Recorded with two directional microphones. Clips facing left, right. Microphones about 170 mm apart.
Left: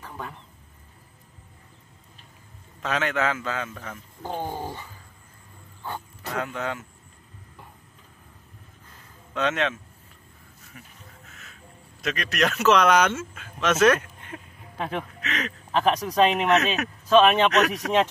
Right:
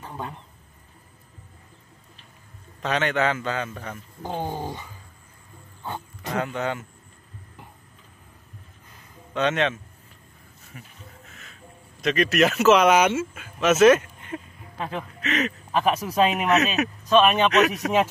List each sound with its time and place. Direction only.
0.0 s a sound: 20° right (ahead or behind)
2.8 s speech: centre (ahead or behind)
4.2 s speech: 15° right (ahead or behind)
5.9 s music: 20° right (ahead or behind)
6.3 s speech: centre (ahead or behind)
9.3 s speech: centre (ahead or behind)
11.2 s music: centre (ahead or behind)
12.0 s speech: centre (ahead or behind)
14.8 s speech: 15° left (ahead or behind)
15.2 s speech: 5° right (ahead or behind)